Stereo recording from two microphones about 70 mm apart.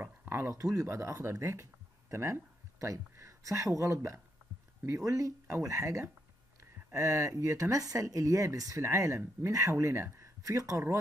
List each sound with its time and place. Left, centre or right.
0.0 s a sound: right
0.5 s speech: right
0.8 s speech: right